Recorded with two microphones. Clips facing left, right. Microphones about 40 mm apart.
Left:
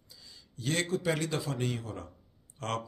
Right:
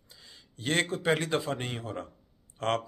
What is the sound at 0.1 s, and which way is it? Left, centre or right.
Speech, right.